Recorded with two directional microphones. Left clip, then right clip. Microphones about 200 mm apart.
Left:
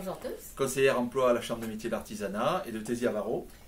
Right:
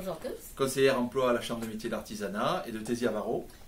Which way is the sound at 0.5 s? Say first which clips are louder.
Even; centre (ahead or behind).